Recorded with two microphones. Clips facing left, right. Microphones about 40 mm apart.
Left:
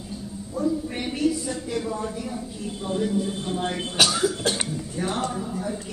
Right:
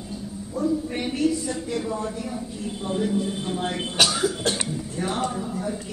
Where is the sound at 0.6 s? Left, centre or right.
Centre.